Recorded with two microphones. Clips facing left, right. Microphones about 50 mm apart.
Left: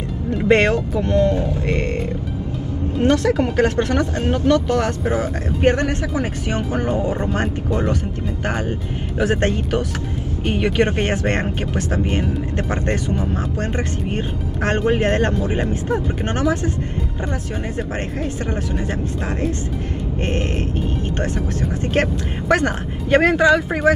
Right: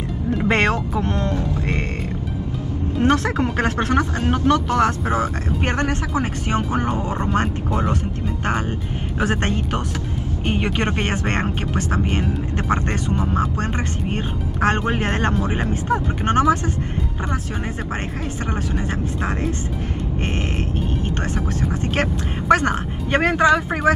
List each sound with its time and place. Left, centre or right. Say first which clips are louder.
0.5 s speech: left 4 dB; right
3.0 s speech: left 2 dB; right
9.2 s speech: left 3 dB; right
10.6 s speech: left 6 dB; right
14.1 s speech: left 1 dB; right
21.5 s speech: left 3 dB; right